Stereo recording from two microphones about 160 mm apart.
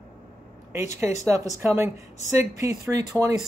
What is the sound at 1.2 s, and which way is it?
Speech, 20° right (ahead or behind).